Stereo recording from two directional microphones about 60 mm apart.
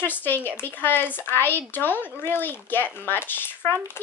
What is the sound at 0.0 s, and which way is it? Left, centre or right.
Speech, left.